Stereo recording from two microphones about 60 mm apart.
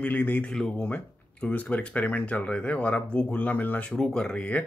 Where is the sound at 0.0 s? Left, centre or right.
Left.